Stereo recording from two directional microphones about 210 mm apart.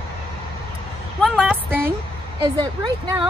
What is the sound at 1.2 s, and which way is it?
Speech, centre (ahead or behind).